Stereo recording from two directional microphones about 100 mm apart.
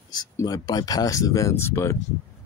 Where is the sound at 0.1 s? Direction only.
40° left (ahead or behind).